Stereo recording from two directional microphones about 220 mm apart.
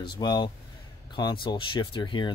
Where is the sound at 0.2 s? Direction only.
20° left (ahead or behind).